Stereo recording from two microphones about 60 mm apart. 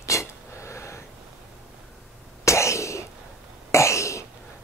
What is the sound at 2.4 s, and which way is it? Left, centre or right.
Cough, left.